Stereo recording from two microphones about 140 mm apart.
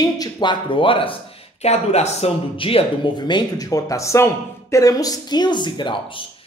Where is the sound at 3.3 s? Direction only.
25° left (ahead or behind).